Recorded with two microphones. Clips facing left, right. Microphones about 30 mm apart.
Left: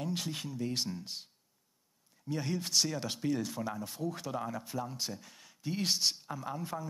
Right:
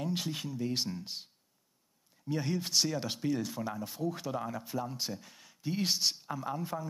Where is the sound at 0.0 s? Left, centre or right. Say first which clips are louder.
Right 2 dB; centre.